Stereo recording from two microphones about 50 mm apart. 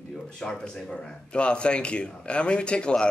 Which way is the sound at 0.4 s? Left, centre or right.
Centre.